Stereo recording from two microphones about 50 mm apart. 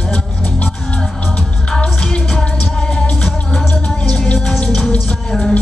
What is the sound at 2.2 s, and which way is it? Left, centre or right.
Music, centre.